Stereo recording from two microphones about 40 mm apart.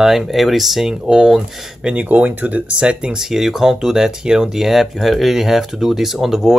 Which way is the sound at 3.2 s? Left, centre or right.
Centre.